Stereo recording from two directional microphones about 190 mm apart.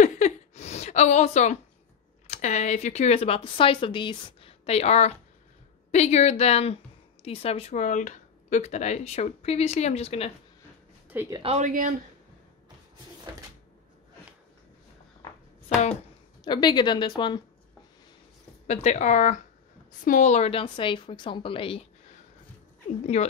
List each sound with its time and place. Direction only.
0.0 s a sound: 40° left (ahead or behind)
2.2 s speech: 35° left (ahead or behind)
11.1 s speech: 15° right (ahead or behind)
11.4 s speech: 35° right (ahead or behind)
16.4 s a woman's voice: 25° left (ahead or behind)
18.7 s a woman's voice: 35° left (ahead or behind)